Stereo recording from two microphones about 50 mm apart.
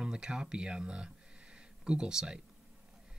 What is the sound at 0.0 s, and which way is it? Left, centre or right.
Speech, centre.